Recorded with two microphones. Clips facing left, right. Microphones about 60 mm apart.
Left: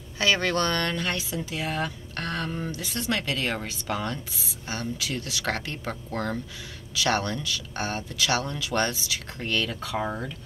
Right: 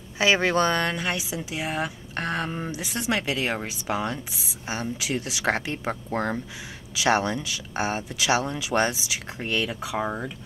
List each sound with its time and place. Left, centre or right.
0.2 s speech: centre